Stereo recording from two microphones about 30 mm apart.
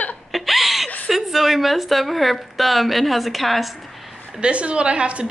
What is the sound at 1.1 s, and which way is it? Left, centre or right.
A woman's voice, centre.